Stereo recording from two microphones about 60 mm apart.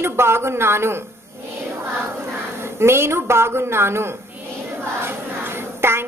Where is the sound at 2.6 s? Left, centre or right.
Right.